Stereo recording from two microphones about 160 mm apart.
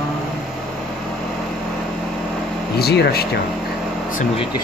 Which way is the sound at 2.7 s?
85° left.